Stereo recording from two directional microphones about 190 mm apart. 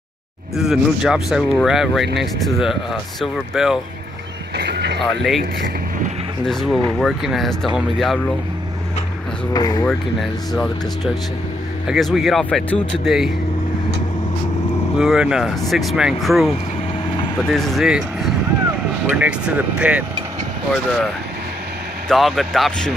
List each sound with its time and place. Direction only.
0.6 s speech: centre (ahead or behind)
4.6 s speech: 60° right (ahead or behind)
5.0 s speech: centre (ahead or behind)
6.4 s speech: centre (ahead or behind)
9.5 s speech: 20° left (ahead or behind)
10.5 s speech: centre (ahead or behind)
15.0 s speech: 5° right (ahead or behind)
22.1 s speech: centre (ahead or behind)